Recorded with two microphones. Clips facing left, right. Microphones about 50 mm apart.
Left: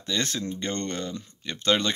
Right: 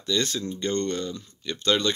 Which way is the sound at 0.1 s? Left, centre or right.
Left.